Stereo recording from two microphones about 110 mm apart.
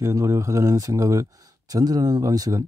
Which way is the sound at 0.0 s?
25° right (ahead or behind).